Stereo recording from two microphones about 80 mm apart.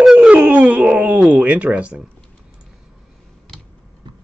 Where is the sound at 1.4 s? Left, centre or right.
Centre.